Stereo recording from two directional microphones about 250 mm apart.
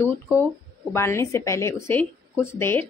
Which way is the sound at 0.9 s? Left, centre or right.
Centre.